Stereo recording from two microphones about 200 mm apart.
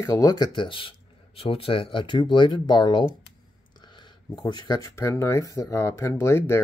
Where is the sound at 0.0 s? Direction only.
15° left (ahead or behind).